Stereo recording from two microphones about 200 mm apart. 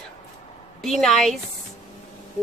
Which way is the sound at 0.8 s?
Centre (ahead or behind).